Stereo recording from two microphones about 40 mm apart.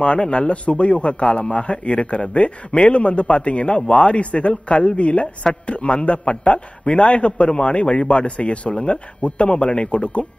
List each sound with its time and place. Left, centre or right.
0.0 s a man's voice: left